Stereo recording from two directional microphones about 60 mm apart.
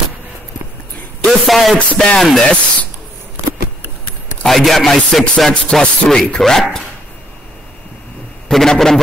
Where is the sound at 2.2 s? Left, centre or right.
Centre.